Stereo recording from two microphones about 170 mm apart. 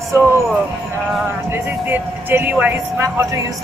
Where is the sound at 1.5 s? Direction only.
10° right (ahead or behind).